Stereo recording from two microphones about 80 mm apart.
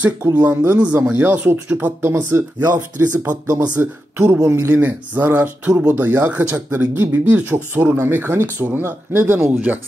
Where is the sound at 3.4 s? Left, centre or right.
Right.